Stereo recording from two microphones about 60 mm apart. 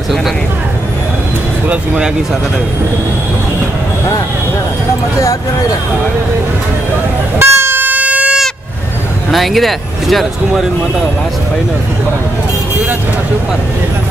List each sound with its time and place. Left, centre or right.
7.3 s vehicle: right
9.3 s speech: centre